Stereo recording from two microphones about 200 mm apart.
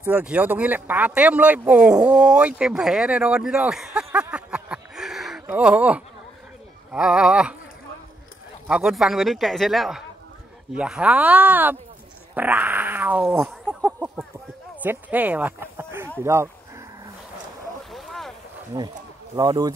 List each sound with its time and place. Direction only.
0.0 s speech: 10° right (ahead or behind)
8.6 s speech: 5° right (ahead or behind)
12.4 s cat: 10° right (ahead or behind)
14.8 s speech: 10° right (ahead or behind)
17.9 s boat: centre (ahead or behind)
18.7 s speech: 15° right (ahead or behind)